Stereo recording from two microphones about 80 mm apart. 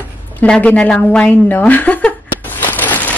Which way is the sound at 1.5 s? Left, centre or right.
Left.